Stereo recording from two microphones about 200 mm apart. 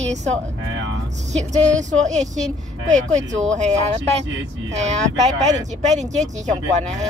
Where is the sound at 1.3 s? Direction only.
35° right (ahead or behind).